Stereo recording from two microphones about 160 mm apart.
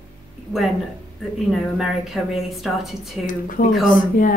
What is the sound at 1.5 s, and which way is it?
A woman's voice, centre (ahead or behind).